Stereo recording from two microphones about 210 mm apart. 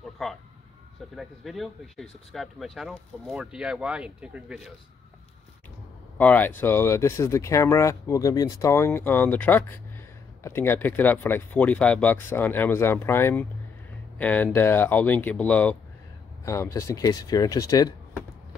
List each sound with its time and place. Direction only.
0.0 s vehicle: centre (ahead or behind)
1.1 s speech: centre (ahead or behind)
6.1 s speech: 10° left (ahead or behind)